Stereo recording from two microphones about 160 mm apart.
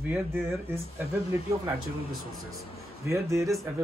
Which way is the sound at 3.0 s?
20° right (ahead or behind).